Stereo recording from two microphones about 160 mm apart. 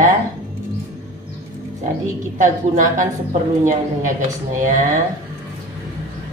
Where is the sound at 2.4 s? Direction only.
50° right (ahead or behind).